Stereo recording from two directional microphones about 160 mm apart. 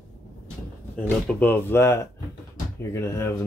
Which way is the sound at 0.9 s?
10° left (ahead or behind).